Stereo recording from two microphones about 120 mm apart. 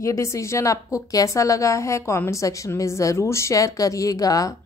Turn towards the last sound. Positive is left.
turn(degrees=30)  # may be behind; listen again after turning